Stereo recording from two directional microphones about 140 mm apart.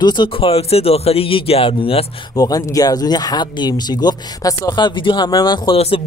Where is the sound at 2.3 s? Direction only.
25° left (ahead or behind).